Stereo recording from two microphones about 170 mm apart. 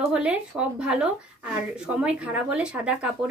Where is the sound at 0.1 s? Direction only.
5° right (ahead or behind).